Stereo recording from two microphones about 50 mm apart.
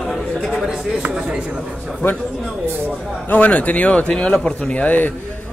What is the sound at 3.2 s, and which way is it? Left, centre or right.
Speech, left.